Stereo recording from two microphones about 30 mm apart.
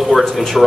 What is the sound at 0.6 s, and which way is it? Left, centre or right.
Speech, centre.